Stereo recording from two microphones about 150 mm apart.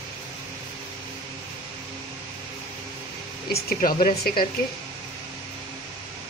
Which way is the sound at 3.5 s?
80° left.